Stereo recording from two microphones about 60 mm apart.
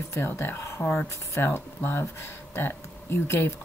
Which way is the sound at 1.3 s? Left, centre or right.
Left.